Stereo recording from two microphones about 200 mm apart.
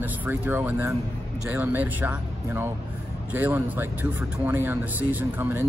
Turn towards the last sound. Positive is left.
turn(degrees=-10)  # may be behind; listen again after turning